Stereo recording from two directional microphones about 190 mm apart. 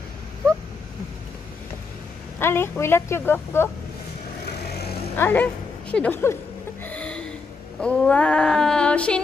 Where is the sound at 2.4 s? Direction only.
15° left (ahead or behind).